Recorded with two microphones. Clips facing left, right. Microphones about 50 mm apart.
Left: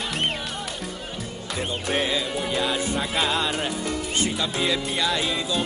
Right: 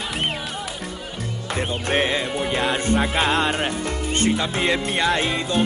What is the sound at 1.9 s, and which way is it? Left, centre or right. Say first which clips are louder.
Music: right 3 dB; right.